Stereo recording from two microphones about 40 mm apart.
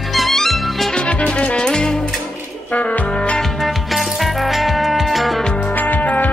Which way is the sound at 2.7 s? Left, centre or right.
Left.